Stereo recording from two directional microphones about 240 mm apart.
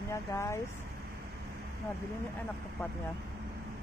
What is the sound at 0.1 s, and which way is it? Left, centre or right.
Speech, centre.